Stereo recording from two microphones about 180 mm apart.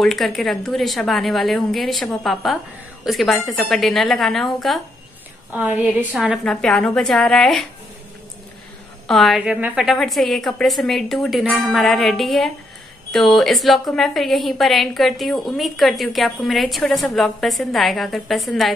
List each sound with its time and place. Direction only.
0.0 s a woman's voice: centre (ahead or behind)
9.0 s a woman's voice: centre (ahead or behind)